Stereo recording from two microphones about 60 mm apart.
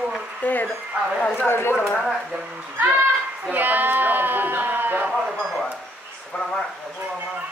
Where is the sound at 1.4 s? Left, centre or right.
Left.